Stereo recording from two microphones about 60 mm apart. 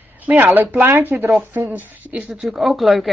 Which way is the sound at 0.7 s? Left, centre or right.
Right.